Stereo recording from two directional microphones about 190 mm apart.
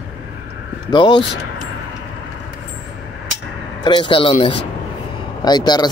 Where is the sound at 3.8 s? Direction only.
25° left (ahead or behind).